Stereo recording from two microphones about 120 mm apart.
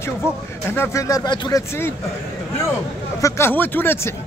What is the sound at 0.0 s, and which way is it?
Speech, 20° left (ahead or behind).